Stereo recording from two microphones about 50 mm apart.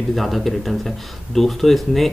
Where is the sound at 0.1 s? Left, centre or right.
Centre.